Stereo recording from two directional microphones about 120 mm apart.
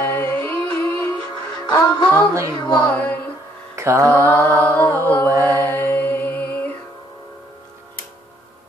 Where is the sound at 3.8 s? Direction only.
25° right (ahead or behind).